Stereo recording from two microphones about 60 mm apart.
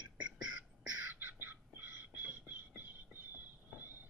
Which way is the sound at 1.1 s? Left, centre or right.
Right.